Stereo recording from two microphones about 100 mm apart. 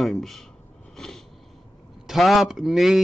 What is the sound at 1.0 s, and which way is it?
Sniff, 5° left (ahead or behind).